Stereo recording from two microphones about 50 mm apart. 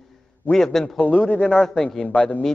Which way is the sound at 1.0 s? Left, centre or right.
Left.